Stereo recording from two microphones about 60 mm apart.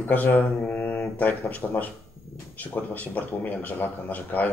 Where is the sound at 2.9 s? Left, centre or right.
Left.